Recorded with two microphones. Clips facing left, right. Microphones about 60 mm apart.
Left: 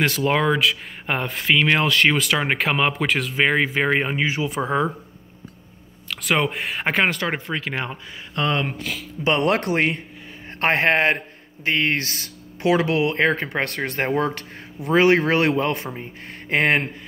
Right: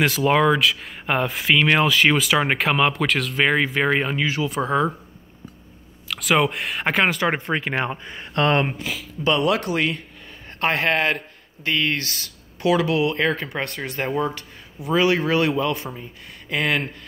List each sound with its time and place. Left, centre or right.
0.0 s speech: centre; by 4.5 s left
6.0 s speech: centre
7.1 s speech: centre
7.5 s speech: right
8.1 s speech: right
8.6 s speech: centre
9.4 s a man's voice: left
13.7 s a man's voice: left